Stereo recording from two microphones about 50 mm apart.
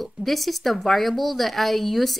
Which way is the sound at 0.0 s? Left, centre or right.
Centre.